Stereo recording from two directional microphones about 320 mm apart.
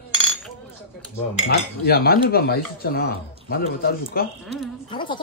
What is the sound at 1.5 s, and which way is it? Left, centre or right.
Speech, left.